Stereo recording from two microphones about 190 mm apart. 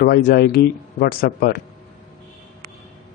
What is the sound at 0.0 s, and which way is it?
Speech, 55° left (ahead or behind).